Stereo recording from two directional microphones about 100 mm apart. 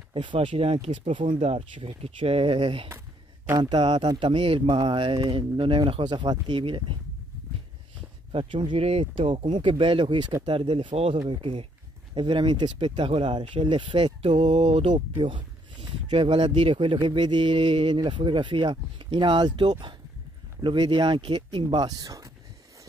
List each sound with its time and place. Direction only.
0.1 s speech: 60° right (ahead or behind); by 1.1 s 90° right
1.4 s speech: 70° right (ahead or behind)
3.5 s speech: 50° right (ahead or behind)
8.3 s speech: 65° right (ahead or behind); by 14.9 s 90° right
14.9 s a man's voice: 55° right (ahead or behind); by 22.3 s 35° right (ahead or behind)